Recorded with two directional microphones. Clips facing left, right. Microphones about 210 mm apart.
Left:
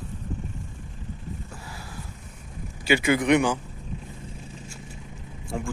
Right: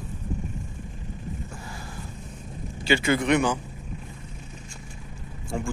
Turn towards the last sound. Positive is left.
turn(degrees=0)  # may be behind; listen again after turning